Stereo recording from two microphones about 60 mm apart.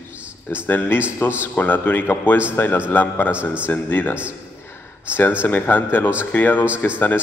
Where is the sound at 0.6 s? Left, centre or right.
Left.